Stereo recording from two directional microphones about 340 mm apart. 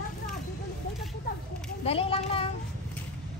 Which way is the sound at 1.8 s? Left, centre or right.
Centre.